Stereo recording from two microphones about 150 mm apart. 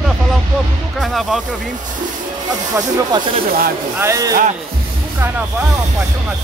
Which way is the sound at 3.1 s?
30° right (ahead or behind).